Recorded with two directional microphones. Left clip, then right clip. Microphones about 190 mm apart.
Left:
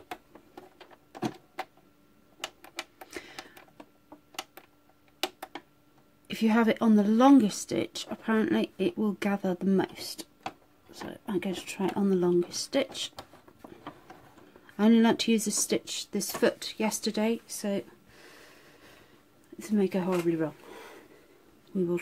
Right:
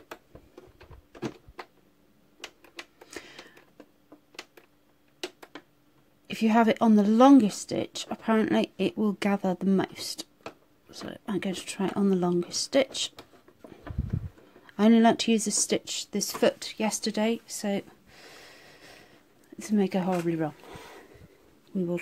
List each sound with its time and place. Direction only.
3.1 s printer: 15° right (ahead or behind)
6.2 s speech: 20° right (ahead or behind)
14.8 s speech: 20° right (ahead or behind); by 18.9 s 40° right (ahead or behind)
19.6 s speech: 30° right (ahead or behind)